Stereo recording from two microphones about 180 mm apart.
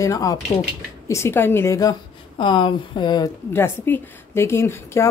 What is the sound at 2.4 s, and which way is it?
Speech, 25° left (ahead or behind).